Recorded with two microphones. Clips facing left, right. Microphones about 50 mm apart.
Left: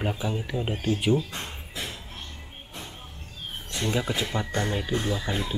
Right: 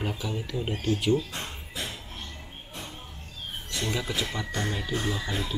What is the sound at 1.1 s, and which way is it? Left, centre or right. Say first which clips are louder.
Music: left 1 dB; centre.